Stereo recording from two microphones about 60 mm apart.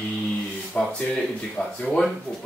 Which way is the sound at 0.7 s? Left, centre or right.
Left.